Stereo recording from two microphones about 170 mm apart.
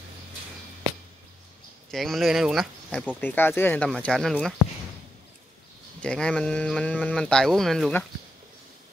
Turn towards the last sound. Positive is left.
turn(degrees=0)  # may be behind; listen again after turning